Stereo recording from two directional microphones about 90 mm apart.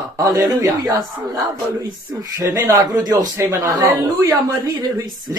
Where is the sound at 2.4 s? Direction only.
35° right (ahead or behind).